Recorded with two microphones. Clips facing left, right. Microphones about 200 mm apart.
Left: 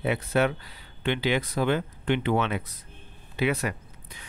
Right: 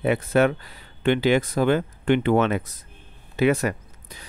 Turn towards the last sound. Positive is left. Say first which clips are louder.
# right 3 dB
turn(degrees=-45)  # may be behind; listen again after turning